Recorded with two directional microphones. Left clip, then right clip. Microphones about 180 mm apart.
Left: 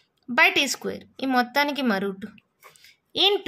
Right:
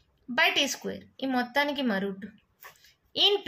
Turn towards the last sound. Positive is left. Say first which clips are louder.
# left 3 dB
turn(degrees=45)  # may be behind; listen again after turning